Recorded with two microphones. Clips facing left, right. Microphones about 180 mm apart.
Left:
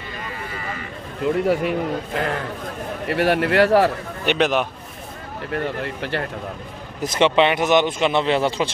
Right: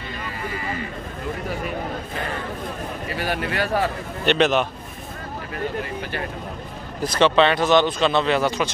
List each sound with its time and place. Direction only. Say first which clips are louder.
1.2 s a man's voice: left 10 dB; 75° left (ahead or behind)
4.3 s a man's voice: right 1 dB; 10° left (ahead or behind)
7.0 s a man's voice: even; 20° left (ahead or behind)